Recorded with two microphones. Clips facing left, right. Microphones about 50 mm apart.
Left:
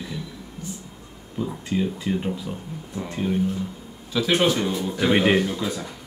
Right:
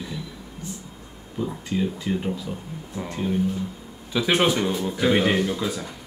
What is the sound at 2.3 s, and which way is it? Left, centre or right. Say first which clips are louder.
Speech: even; centre.